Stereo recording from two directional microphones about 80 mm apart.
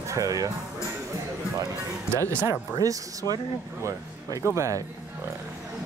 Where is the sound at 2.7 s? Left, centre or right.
Right.